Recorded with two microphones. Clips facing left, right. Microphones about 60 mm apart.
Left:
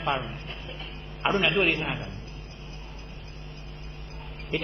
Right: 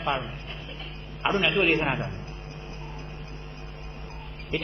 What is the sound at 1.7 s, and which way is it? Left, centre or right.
Speech, right.